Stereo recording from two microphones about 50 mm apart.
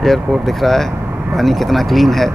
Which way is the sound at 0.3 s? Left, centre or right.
Centre.